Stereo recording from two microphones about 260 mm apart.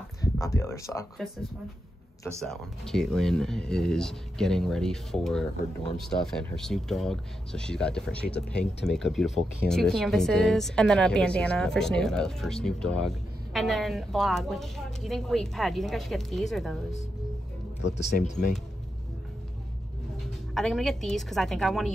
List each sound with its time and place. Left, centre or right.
0.2 s speech: centre
2.4 s speech: centre
20.2 s a woman's voice: centre